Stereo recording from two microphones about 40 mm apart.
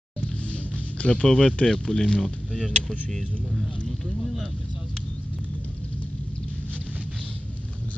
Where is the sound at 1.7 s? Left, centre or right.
Centre.